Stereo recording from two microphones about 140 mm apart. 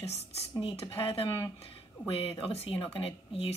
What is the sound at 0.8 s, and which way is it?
Speech, 40° left (ahead or behind).